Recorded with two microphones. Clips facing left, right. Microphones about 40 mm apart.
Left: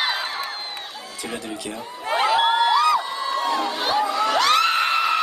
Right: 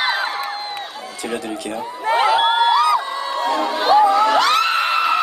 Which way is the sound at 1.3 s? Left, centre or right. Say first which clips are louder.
Right 6 dB; centre.